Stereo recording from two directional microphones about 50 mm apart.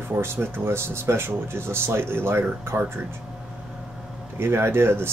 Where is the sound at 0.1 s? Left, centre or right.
Right.